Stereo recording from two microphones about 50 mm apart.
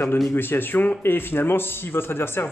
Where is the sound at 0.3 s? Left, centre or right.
Left.